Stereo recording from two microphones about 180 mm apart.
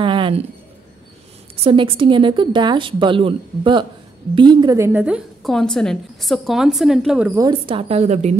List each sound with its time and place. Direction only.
0.0 s a sound: 30° right (ahead or behind)
1.6 s a woman's voice: 30° right (ahead or behind); by 7.3 s 5° right (ahead or behind)
7.3 s a woman's voice: 25° right (ahead or behind)